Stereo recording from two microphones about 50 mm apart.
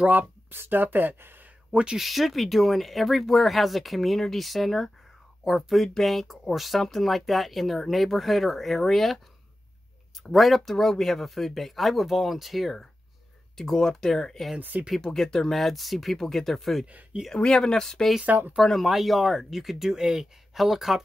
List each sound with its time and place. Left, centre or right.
0.0 s speech: right
0.5 s speech: right
1.7 s speech: right
2.0 s speech: centre
10.3 s speech: centre
13.6 s speech: centre
14.6 s speech: right
15.0 s speech: centre
16.8 s speech: right
17.3 s speech: centre
18.2 s speech: right
18.6 s speech: centre